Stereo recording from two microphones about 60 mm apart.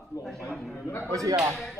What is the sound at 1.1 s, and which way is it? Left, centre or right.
Speech, right.